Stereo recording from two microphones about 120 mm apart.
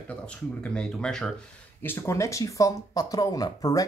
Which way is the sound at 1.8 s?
20° left (ahead or behind).